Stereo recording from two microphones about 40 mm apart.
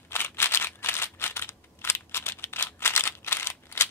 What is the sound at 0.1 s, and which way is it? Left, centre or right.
Scissors, left.